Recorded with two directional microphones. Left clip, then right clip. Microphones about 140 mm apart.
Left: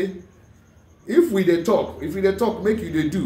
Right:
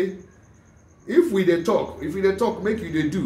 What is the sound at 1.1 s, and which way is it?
A man's voice, 15° right (ahead or behind).